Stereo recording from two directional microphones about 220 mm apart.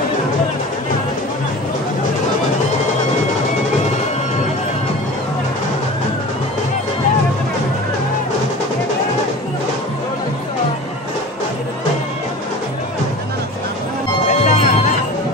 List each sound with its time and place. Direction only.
14.3 s music: 30° left (ahead or behind)